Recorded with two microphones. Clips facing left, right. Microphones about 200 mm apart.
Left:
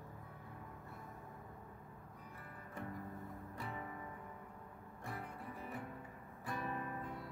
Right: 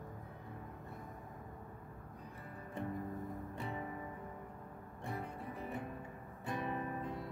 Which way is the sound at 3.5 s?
25° right (ahead or behind).